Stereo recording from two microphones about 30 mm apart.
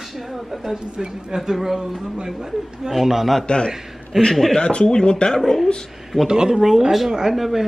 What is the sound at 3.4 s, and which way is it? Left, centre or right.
Speech, left.